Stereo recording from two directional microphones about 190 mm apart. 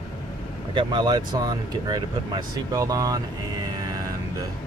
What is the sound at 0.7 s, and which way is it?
Speech, 25° right (ahead or behind).